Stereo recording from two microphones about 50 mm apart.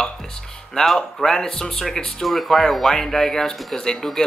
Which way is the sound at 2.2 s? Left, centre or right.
Centre.